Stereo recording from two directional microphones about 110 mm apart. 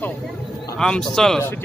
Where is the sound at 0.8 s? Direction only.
5° left (ahead or behind).